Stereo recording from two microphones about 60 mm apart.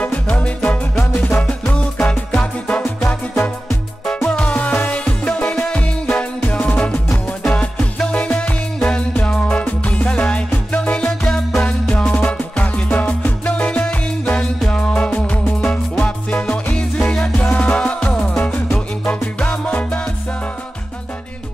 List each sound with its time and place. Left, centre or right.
0.0 s music: left
4.4 s music: left
12.1 s music: left
15.1 s music: left; by 17.3 s centre
17.4 s music: left